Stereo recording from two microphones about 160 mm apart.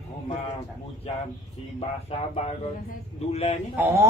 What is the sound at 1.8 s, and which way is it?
Speech, 40° left (ahead or behind).